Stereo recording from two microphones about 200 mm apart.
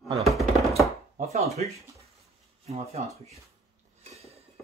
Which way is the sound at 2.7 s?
30° right (ahead or behind).